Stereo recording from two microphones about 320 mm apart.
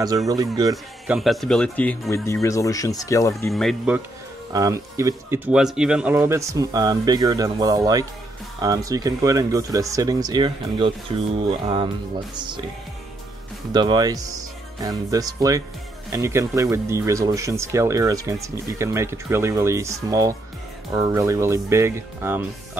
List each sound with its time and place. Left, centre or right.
0.3 s speech: centre
13.7 s speech: centre